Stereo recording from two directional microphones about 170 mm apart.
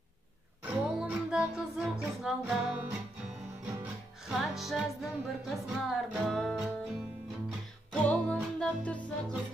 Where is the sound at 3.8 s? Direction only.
Centre (ahead or behind).